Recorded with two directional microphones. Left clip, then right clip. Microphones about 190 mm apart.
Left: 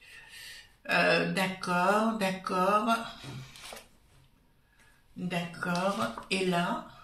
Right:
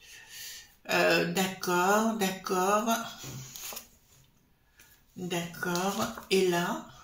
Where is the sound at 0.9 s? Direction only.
45° right (ahead or behind).